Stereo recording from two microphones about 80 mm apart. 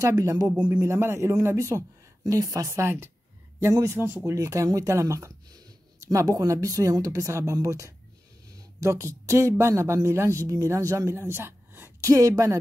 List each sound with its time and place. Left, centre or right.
0.0 s speech: right
0.8 s speech: right
2.8 s speech: right
11.1 s a sound: right
12.1 s speech: right